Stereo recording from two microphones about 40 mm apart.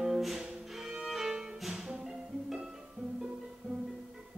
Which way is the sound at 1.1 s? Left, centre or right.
Centre.